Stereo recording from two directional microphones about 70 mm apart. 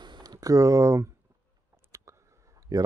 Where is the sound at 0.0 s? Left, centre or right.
Right.